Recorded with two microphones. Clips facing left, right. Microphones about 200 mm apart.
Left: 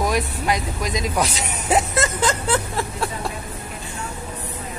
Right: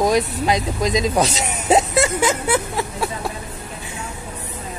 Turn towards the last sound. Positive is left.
turn(degrees=-5)  # may be behind; listen again after turning